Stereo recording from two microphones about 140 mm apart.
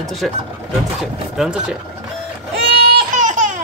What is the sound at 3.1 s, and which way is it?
Laughter, 65° right (ahead or behind).